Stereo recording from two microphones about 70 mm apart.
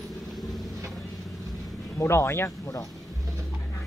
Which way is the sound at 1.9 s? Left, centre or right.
Left.